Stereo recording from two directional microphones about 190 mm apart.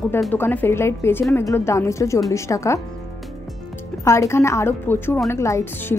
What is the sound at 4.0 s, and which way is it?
A woman's voice, 15° left (ahead or behind).